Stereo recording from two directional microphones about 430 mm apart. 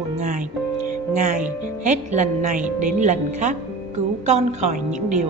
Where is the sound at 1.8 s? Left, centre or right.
Centre.